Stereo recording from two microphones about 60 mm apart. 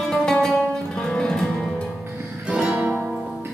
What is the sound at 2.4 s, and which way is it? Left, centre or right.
Music, centre.